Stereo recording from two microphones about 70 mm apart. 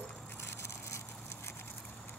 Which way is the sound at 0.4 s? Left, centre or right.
Left.